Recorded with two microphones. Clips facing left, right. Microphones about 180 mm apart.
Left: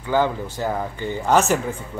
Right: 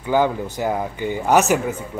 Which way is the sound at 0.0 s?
15° right (ahead or behind).